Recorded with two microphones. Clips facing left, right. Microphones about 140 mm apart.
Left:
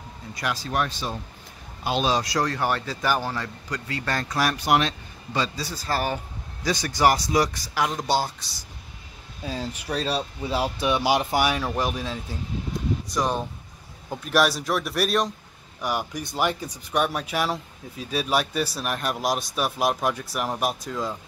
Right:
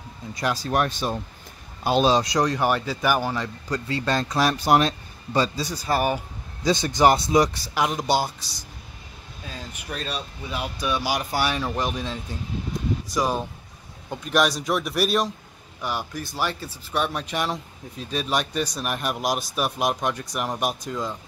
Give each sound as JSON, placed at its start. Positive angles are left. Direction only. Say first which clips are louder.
{"t": 0.3, "sound": "speech", "louder": "right 4 dB", "side_deg": -30}
{"t": 2.0, "sound": "speech", "louder": "right 2 dB", "side_deg": -25}
{"t": 3.7, "sound": "speech", "louder": "right 4 dB", "side_deg": -25}
{"t": 4.6, "sound": "speech", "louder": "right 3 dB", "side_deg": -40}
{"t": 5.6, "sound": "speech", "louder": "right 3 dB", "side_deg": -15}
{"t": 9.6, "sound": "speech", "louder": "left 5 dB", "side_deg": 35}
{"t": 11.4, "sound": "speech", "louder": "left 1 dB", "side_deg": 5}
{"t": 15.8, "sound": "speech", "louder": "left 2 dB", "side_deg": 10}